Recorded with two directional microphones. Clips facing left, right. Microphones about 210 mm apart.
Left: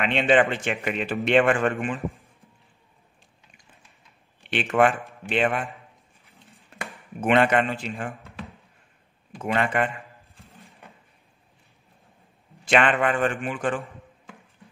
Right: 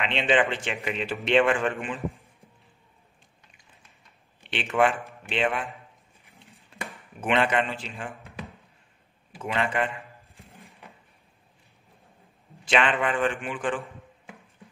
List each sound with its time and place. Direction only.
0.0 s a man's voice: 45° left (ahead or behind)
4.5 s a man's voice: 45° left (ahead or behind)
7.2 s a man's voice: 45° left (ahead or behind)
9.4 s a man's voice: 50° left (ahead or behind)
10.4 s a sound: centre (ahead or behind)
12.6 s a man's voice: 50° left (ahead or behind)